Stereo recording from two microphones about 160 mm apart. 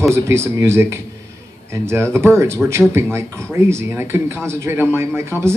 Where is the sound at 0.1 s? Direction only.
15° right (ahead or behind).